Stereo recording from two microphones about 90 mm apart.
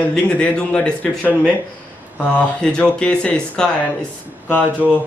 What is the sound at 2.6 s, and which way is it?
A man's voice, 10° left (ahead or behind).